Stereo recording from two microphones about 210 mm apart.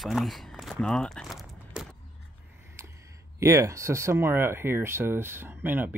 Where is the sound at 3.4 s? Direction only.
15° right (ahead or behind).